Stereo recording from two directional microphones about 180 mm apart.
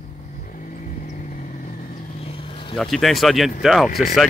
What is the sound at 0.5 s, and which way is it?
Vehicle, 45° left (ahead or behind).